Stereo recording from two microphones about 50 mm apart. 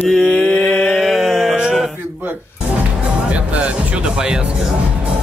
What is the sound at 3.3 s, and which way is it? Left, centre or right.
Speech, right.